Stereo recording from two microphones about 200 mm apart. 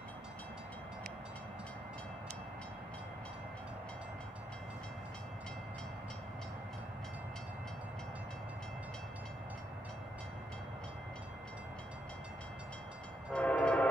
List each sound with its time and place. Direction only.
13.3 s train: 5° left (ahead or behind)